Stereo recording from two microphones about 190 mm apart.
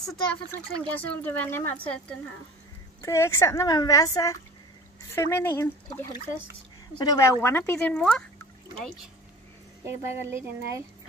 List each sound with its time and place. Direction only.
0.0 s a woman's voice: centre (ahead or behind)
3.0 s a woman's voice: 15° left (ahead or behind)
9.8 s speech: 15° right (ahead or behind)